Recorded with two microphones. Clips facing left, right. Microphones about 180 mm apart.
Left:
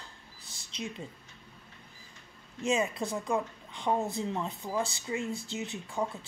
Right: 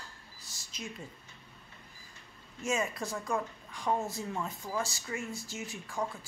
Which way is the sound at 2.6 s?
20° left (ahead or behind).